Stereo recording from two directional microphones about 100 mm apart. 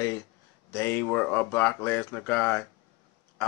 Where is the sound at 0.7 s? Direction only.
25° left (ahead or behind).